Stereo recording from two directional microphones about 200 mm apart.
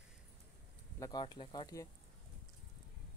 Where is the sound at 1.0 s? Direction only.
20° left (ahead or behind).